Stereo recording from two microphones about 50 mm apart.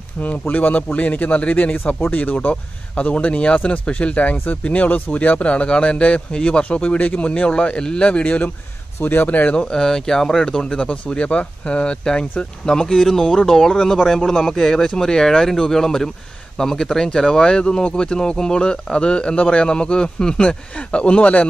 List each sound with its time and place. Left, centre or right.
0.2 s a man's voice: left
9.0 s a man's voice: left
9.6 s speech: centre